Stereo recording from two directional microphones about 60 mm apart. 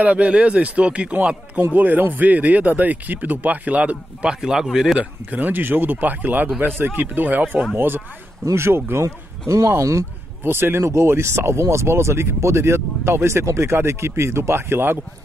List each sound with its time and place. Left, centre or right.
0.0 s speech: right
4.9 s speech: right
7.7 s speech: right
9.7 s speech: right
10.4 s speech: right